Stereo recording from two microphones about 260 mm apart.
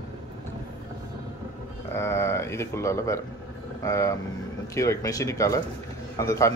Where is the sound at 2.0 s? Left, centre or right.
Centre.